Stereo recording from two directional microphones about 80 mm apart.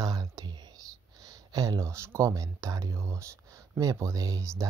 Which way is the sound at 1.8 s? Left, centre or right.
Right.